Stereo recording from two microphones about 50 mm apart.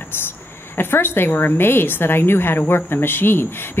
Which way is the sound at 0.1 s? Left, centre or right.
Left.